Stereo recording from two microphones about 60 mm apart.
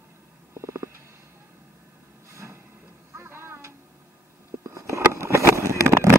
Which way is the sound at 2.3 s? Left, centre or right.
Right.